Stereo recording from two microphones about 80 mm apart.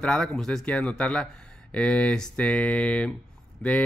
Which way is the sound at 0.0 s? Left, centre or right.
Centre.